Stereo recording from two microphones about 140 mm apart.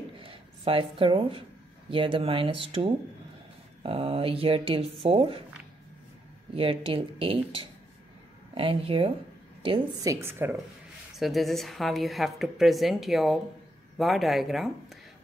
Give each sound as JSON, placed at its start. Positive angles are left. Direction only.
{"t": 0.2, "sound": "a sound", "side_deg": -40}
{"t": 1.9, "sound": "speech", "side_deg": -40}
{"t": 6.5, "sound": "speech", "side_deg": -40}
{"t": 9.9, "sound": "speech", "side_deg": -20}
{"t": 11.1, "sound": "speech", "side_deg": 0}